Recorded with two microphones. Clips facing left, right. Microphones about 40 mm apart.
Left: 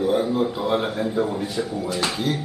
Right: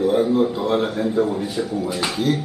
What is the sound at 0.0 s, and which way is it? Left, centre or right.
A man's voice, centre.